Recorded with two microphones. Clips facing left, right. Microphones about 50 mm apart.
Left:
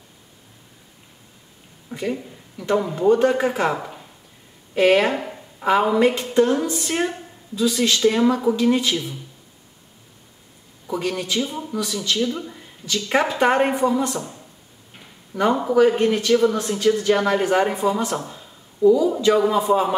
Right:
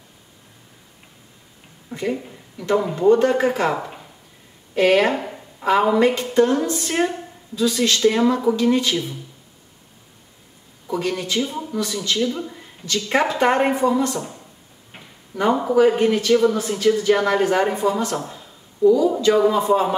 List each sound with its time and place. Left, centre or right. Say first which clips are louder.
1.9 s a woman's voice: right 1 dB; centre
4.7 s a sound: even; centre
5.7 s a woman's voice: right 1 dB; centre
7.5 s a woman's voice: even; centre
8.1 s speech: even; centre
10.9 s a woman's voice: right 1 dB; centre
11.3 s a woman's voice: right 1 dB; centre
15.3 s speech: even; centre